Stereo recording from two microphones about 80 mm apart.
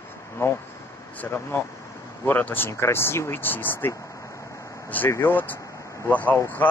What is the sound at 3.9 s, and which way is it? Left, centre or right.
Vehicle, left.